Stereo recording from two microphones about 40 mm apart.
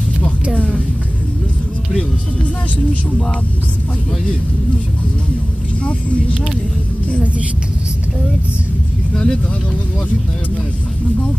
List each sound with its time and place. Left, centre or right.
5.9 s speech: left
9.1 s speech: centre